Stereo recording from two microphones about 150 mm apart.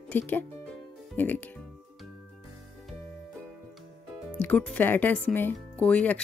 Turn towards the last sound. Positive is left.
turn(degrees=10)  # may be behind; listen again after turning